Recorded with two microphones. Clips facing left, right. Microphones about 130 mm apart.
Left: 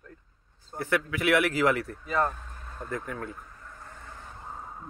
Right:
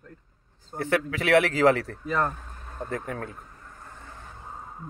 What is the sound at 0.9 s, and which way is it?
Speech, 30° right (ahead or behind).